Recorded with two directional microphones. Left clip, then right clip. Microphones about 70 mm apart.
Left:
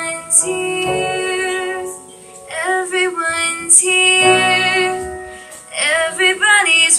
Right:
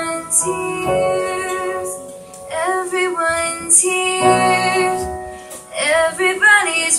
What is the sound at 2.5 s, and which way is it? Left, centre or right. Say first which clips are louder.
Music: left 1 dB; centre.